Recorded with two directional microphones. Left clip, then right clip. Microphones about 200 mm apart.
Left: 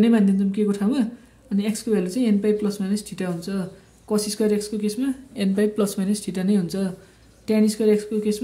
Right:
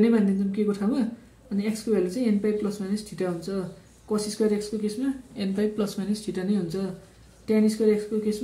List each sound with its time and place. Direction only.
0.0 s speech: 40° left (ahead or behind)